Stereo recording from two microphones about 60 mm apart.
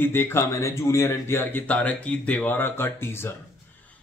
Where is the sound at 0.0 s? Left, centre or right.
Left.